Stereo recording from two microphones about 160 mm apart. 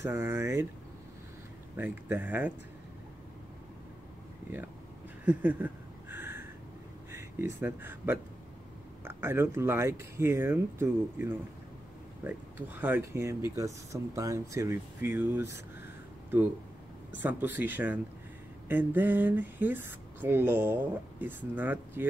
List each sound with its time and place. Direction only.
0.0 s speech: 15° right (ahead or behind)
1.8 s speech: 10° right (ahead or behind)
5.2 s a sound: 10° right (ahead or behind)
7.1 s speech: 15° right (ahead or behind)
17.1 s speech: 10° right (ahead or behind)